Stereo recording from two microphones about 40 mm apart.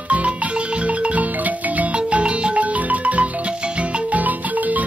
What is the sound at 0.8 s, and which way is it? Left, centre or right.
Marimba, right.